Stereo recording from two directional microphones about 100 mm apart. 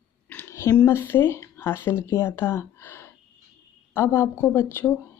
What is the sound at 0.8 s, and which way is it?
Speech, 25° left (ahead or behind).